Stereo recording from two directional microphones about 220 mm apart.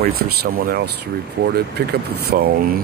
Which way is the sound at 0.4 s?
45° right (ahead or behind).